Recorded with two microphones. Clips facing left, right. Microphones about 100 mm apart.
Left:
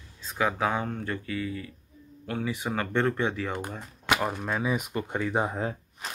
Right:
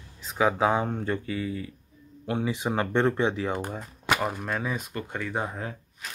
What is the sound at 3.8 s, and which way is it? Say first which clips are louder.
Speech: left 2 dB; centre (ahead or behind).